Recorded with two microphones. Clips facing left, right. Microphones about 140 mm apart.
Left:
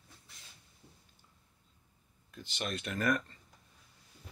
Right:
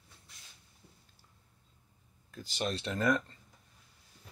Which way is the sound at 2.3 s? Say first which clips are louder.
Right 3 dB; 40° right (ahead or behind).